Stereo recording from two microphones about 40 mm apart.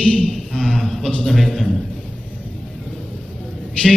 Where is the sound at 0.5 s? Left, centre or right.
Centre.